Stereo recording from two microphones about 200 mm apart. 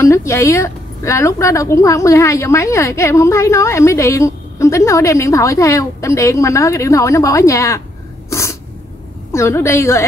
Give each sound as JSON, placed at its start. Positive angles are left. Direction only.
{"t": 0.0, "sound": "a woman's voice", "side_deg": 15}
{"t": 8.3, "sound": "sneeze", "side_deg": 15}
{"t": 9.3, "sound": "a woman's voice", "side_deg": 15}